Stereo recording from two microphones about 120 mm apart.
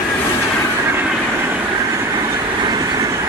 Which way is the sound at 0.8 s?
15° right (ahead or behind).